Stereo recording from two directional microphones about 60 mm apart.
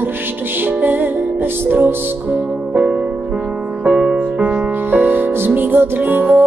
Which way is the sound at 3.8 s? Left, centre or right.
Centre.